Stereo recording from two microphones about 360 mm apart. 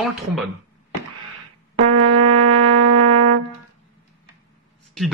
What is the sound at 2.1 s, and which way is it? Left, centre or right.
Music, right.